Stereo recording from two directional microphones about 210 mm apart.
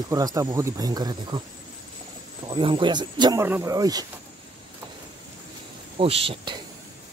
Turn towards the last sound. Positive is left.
turn(degrees=-25)  # may be behind; listen again after turning